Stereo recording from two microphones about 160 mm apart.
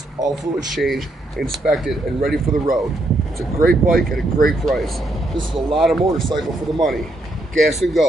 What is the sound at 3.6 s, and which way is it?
Speech, 65° right (ahead or behind).